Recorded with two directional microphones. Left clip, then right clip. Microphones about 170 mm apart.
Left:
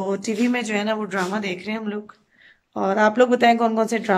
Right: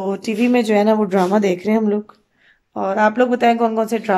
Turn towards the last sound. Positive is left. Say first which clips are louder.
# right 2 dB
turn(degrees=-5)  # may be behind; listen again after turning